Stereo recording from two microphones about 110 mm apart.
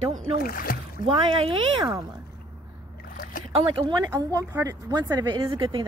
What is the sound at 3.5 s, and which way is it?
Speech, 55° right (ahead or behind).